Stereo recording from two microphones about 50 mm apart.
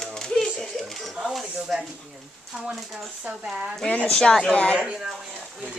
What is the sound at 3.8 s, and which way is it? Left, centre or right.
Speech, left.